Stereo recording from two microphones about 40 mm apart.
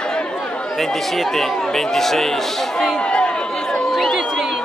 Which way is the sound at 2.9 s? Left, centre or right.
Left.